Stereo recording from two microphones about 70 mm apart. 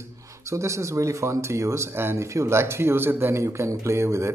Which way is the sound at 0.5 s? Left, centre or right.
Right.